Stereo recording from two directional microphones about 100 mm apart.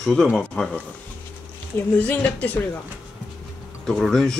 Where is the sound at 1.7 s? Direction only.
15° left (ahead or behind).